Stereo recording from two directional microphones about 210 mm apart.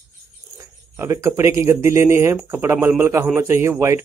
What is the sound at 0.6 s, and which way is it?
Speech, 15° right (ahead or behind).